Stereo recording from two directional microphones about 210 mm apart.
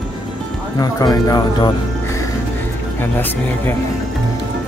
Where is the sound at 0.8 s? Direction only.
15° left (ahead or behind).